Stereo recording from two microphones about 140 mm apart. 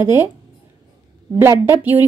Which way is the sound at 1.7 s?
15° right (ahead or behind).